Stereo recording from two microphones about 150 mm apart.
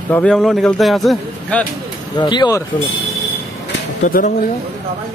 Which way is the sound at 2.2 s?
30° left (ahead or behind).